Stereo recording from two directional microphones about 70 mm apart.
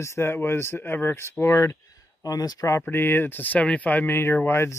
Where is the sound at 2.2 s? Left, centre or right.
Left.